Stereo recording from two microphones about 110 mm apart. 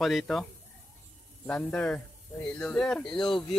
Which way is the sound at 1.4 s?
15° left (ahead or behind).